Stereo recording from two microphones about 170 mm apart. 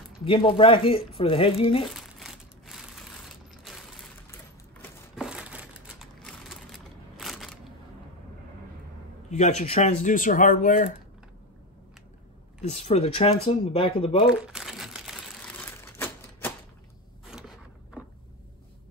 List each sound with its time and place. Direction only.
0.2 s speech: 30° left (ahead or behind)
1.9 s crumpling: centre (ahead or behind)
5.1 s crushing: 5° right (ahead or behind)
9.3 s speech: 40° left (ahead or behind)
12.6 s speech: 40° left (ahead or behind)
14.2 s crumpling: 5° right (ahead or behind); by 16.5 s 15° left (ahead or behind)
17.2 s zipper: 5° right (ahead or behind)